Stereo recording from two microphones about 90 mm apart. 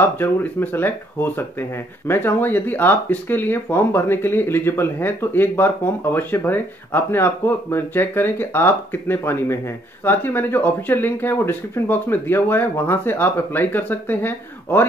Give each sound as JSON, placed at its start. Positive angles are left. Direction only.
{"t": 0.0, "sound": "speech", "side_deg": 25}